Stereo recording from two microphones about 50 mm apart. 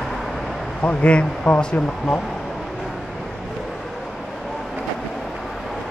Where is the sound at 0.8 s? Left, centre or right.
Left.